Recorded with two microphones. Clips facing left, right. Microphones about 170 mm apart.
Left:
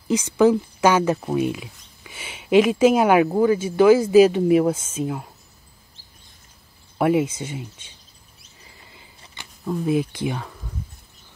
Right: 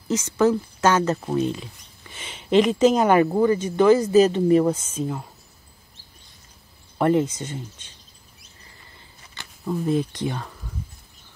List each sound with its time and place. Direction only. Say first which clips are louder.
0.1 s speech: left 3 dB; 15° left (ahead or behind)
7.0 s speech: even; 10° left (ahead or behind)
8.9 s a sound: even; 15° left (ahead or behind)
9.7 s speech: left 1 dB; 5° left (ahead or behind)